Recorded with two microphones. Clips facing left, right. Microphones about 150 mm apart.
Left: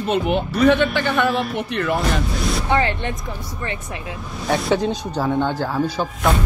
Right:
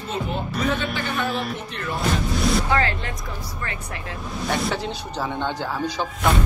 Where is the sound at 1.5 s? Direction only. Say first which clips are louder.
Left 8 dB; 65° left (ahead or behind).